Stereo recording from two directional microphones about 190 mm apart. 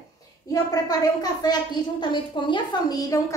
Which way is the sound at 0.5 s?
20° left (ahead or behind).